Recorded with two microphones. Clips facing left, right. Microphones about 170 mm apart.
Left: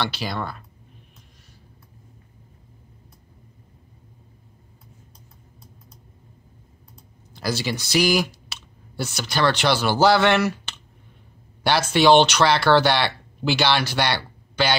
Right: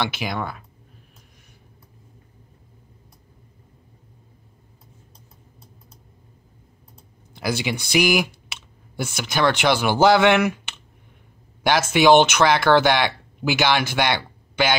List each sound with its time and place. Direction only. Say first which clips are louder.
0.0 s speech: right 1 dB; 15° right (ahead or behind)
7.3 s speech: right 1 dB; 15° right (ahead or behind)
7.7 s speech: even; 55° right (ahead or behind)
8.9 s speech: right 1 dB; 15° right (ahead or behind)
11.9 s speech: right 1 dB; 10° right (ahead or behind)